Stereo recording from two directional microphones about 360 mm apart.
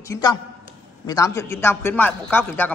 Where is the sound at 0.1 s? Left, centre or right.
Centre.